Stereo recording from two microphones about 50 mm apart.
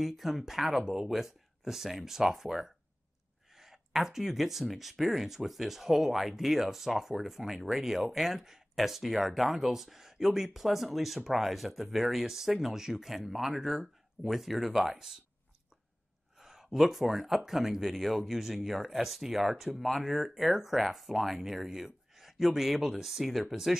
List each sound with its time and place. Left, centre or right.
0.0 s speech: centre
16.3 s speech: centre